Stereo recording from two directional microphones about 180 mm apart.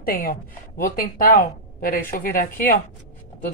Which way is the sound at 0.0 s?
55° left (ahead or behind).